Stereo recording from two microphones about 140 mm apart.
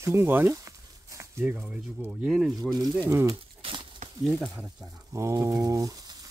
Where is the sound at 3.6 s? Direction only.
40° right (ahead or behind).